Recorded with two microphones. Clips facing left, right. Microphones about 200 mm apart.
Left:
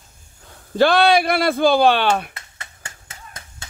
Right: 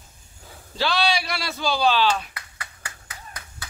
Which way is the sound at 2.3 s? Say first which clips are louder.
Even; 25° left (ahead or behind).